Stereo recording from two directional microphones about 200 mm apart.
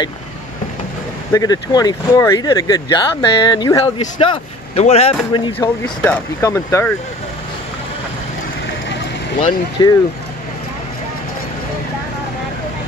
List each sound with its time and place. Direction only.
1.3 s speech: 20° left (ahead or behind)
5.6 s speech: 10° left (ahead or behind)
9.4 s speech: 20° left (ahead or behind)